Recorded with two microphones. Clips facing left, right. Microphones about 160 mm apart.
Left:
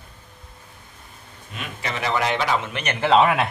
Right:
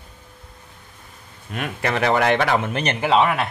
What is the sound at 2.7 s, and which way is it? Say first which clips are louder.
Speech: right 5 dB; 35° right (ahead or behind).